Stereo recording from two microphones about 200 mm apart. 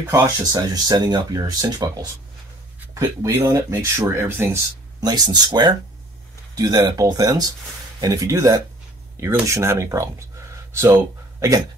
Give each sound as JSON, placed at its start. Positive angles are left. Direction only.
{"t": 0.1, "sound": "speech", "side_deg": -15}